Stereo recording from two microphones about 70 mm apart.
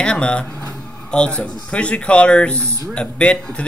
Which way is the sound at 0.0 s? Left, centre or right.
Centre.